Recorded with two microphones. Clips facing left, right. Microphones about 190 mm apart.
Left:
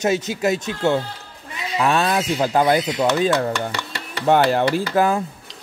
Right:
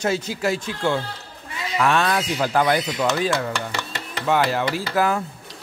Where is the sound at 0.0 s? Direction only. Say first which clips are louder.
Left 3 dB; 20° left (ahead or behind).